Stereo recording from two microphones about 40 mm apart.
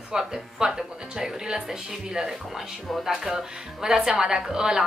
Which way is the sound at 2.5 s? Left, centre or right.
Centre.